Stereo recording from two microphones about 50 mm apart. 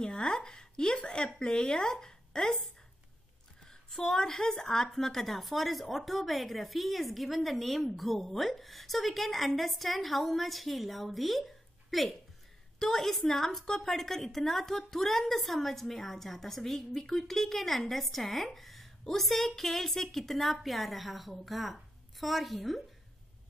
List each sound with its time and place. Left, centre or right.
0.0 s a woman's voice: centre
3.9 s a woman's voice: centre